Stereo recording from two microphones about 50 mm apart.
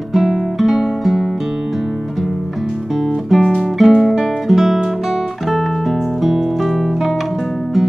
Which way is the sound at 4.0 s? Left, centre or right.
Centre.